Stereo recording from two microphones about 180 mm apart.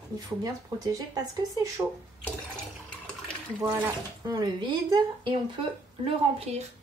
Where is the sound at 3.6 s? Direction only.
10° right (ahead or behind).